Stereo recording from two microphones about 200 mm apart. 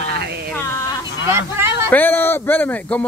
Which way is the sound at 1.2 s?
15° right (ahead or behind).